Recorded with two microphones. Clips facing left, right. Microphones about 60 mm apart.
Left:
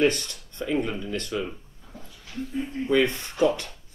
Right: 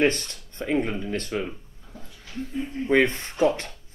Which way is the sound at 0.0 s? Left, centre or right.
Right.